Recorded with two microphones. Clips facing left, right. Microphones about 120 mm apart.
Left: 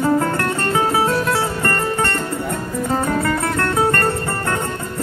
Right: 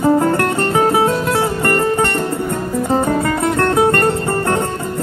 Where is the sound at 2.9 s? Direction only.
20° right (ahead or behind).